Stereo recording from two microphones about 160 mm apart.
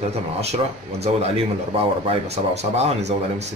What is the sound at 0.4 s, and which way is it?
Speech, 40° right (ahead or behind).